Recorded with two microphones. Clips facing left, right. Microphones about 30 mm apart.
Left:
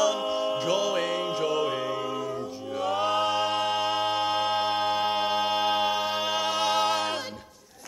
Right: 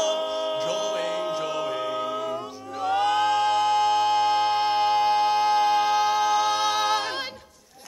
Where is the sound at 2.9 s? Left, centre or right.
Right.